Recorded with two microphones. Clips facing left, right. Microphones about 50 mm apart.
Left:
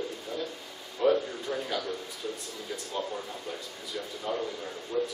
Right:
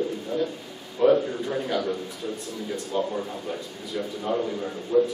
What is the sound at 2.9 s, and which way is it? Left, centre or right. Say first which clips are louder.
A man's voice: right 7 dB; centre.